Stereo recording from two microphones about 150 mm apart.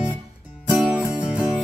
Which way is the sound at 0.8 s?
5° right (ahead or behind).